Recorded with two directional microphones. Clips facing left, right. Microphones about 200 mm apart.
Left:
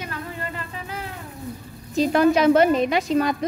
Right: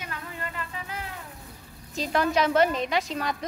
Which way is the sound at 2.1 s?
10° left (ahead or behind).